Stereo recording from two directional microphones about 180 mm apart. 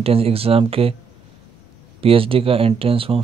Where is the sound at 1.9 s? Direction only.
30° right (ahead or behind).